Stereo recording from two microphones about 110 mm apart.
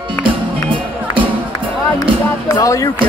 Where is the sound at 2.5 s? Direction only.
30° left (ahead or behind).